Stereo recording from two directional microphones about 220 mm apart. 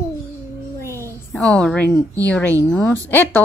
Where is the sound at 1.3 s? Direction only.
5° left (ahead or behind).